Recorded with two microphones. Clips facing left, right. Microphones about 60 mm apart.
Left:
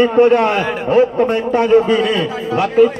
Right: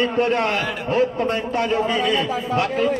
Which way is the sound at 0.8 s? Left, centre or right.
Centre.